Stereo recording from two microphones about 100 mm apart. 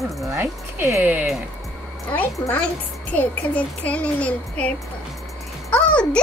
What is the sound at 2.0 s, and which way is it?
A child's voice, 15° left (ahead or behind).